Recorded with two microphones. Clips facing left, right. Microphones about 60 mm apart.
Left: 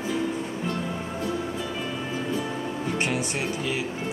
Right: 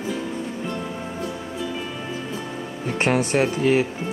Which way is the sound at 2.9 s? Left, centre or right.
Right.